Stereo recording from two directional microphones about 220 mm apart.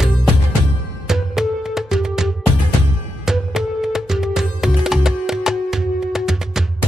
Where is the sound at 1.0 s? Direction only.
Centre (ahead or behind).